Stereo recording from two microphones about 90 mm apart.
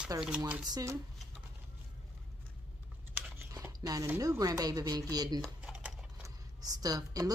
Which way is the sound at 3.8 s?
40° right (ahead or behind).